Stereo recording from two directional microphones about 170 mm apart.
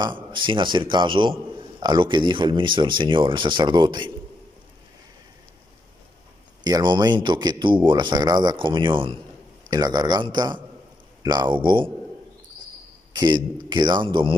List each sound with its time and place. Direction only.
0.0 s a man's voice: 30° right (ahead or behind)
6.6 s a man's voice: 25° right (ahead or behind)
13.1 s a man's voice: 25° right (ahead or behind)